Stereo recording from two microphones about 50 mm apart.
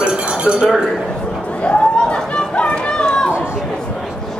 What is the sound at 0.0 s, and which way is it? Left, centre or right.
Chink, centre.